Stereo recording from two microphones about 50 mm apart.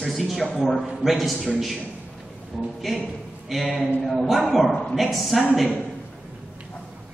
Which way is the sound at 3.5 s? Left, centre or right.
Centre.